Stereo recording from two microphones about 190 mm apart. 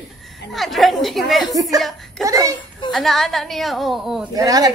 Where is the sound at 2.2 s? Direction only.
15° right (ahead or behind).